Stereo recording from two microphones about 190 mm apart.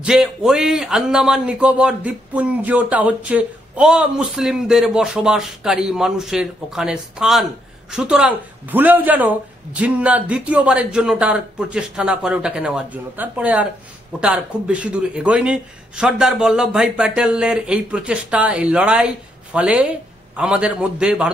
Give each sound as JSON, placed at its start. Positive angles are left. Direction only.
{"t": 0.0, "sound": "a man's voice", "side_deg": 0}